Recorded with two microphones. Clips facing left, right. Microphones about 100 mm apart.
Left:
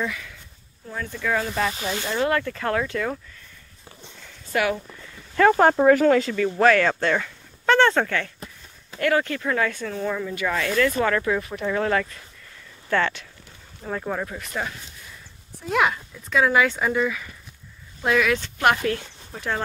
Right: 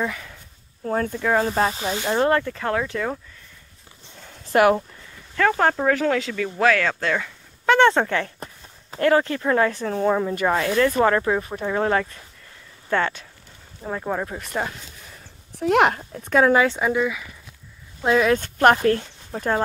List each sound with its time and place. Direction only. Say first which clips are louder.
0.0 s speech: right 2 dB; 30° right (ahead or behind)
0.8 s speech: right 9 dB; 50° right (ahead or behind)
1.2 s speech: right 2 dB; 25° right (ahead or behind)
2.4 s speech: even; 15° right (ahead or behind)
4.6 s speech: right 7 dB; 50° right (ahead or behind)
5.3 s speech: left 3 dB; 15° left (ahead or behind)
7.7 s speech: right 2 dB; 20° right (ahead or behind)
15.6 s speech: right 4 dB; 60° right (ahead or behind)
16.5 s speech: right 2 dB; 30° right (ahead or behind)
16.8 s speech: right 1 dB; 15° right (ahead or behind)
18.0 s speech: right 3 dB; 25° right (ahead or behind)
18.3 s speech: right 4 dB; 40° right (ahead or behind)